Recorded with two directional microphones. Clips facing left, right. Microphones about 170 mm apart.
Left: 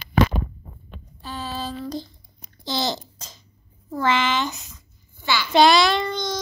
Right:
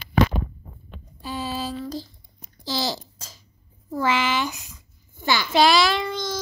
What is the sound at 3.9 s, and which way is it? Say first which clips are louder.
Speech: left 1 dB; 10° right (ahead or behind).